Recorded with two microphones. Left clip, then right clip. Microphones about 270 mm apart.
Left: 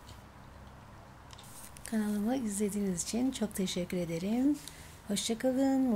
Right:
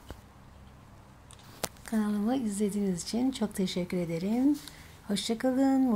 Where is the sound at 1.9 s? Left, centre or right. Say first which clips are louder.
Right 2 dB; centre.